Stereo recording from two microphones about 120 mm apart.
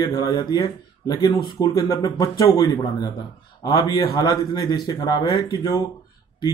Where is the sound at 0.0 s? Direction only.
30° left (ahead or behind).